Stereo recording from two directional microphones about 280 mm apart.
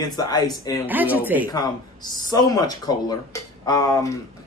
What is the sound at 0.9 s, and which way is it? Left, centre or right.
Speech, centre.